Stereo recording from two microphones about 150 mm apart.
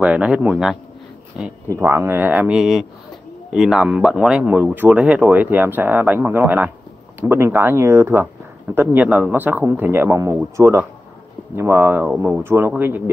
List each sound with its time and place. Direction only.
0.0 s speech: 10° right (ahead or behind)